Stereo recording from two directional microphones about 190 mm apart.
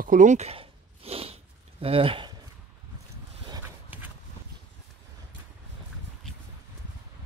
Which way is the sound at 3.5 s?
10° right (ahead or behind).